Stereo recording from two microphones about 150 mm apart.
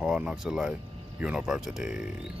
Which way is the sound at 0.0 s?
5° right (ahead or behind).